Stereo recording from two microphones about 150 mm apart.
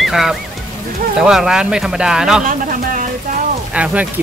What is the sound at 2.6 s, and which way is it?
Speech, 60° right (ahead or behind).